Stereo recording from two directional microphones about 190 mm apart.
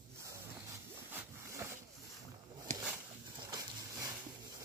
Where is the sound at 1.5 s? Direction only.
15° right (ahead or behind).